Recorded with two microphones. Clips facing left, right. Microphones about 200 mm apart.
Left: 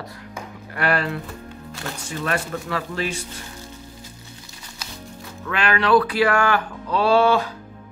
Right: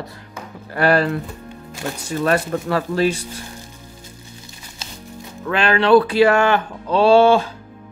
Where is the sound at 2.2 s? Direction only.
40° right (ahead or behind).